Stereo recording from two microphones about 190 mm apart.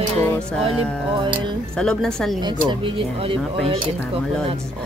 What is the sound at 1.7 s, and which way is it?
Speech, 5° left (ahead or behind).